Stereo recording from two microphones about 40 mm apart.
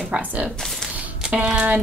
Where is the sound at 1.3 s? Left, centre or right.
Right.